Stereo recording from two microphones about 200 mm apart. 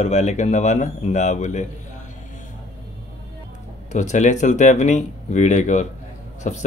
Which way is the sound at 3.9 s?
35° left (ahead or behind).